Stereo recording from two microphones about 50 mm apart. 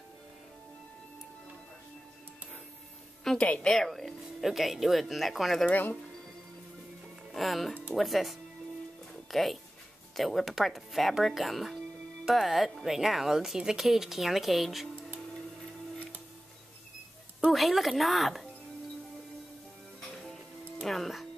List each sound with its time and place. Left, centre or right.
3.3 s a woman's voice: left
3.6 s speech: centre
5.7 s speech: left
7.3 s speech: centre
17.5 s speech: centre
20.8 s speech: centre